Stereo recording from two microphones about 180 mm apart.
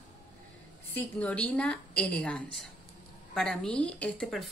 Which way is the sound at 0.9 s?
5° left (ahead or behind).